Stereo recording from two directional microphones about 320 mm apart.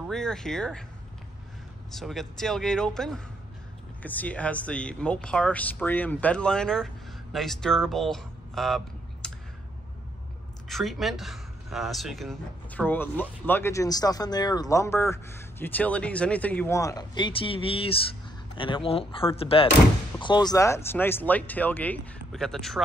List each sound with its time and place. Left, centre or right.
0.0 s speech: centre
1.9 s speech: centre
10.7 s speech: centre